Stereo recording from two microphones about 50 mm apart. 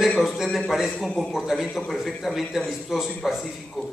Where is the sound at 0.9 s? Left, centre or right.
Centre.